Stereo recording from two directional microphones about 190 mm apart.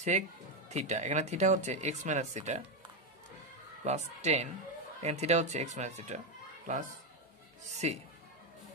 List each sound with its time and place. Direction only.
0.1 s speech: 40° right (ahead or behind)
3.8 s speech: 35° right (ahead or behind)